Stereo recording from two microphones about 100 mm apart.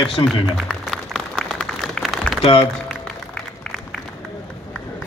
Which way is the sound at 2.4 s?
65° left (ahead or behind).